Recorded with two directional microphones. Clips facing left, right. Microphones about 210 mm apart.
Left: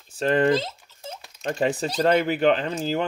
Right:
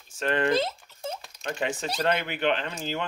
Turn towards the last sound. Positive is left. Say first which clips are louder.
# left 6 dB
turn(degrees=40)  # may be behind; listen again after turning